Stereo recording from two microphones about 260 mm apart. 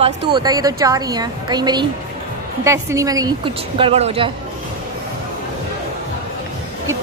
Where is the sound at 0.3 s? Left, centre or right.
Centre.